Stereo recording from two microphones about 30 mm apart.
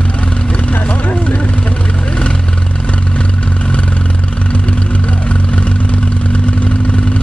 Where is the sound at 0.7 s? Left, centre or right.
Left.